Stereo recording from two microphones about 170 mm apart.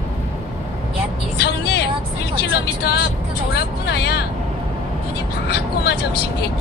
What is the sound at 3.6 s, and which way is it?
Vehicle, 70° left (ahead or behind).